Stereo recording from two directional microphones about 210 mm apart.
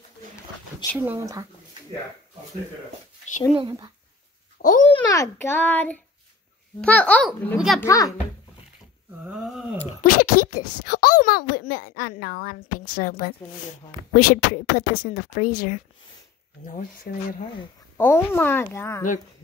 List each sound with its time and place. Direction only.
0.9 s speech: 10° right (ahead or behind)
3.5 s speech: 20° right (ahead or behind)
4.6 s a sound: 40° left (ahead or behind)
4.9 s a child's voice: 15° left (ahead or behind); by 7.8 s centre (ahead or behind)
7.8 s speech: 15° left (ahead or behind)
9.2 s a sound: 5° right (ahead or behind)
9.8 s speech: 40° left (ahead or behind)
14.3 s speech: 40° left (ahead or behind)
17.9 s speech: 10° left (ahead or behind)